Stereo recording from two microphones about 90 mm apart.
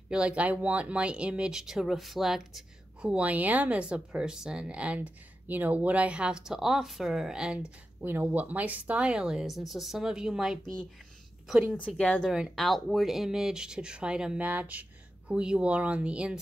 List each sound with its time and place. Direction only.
0.1 s speech: 10° right (ahead or behind)
8.0 s speech: 25° right (ahead or behind); by 10.6 s 5° right (ahead or behind)
11.7 s speech: 15° left (ahead or behind)
12.3 s speech: 10° right (ahead or behind)
12.5 s speech: centre (ahead or behind)